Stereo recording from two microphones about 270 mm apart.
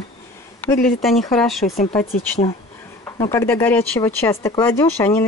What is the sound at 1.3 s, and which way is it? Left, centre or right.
Speech, centre.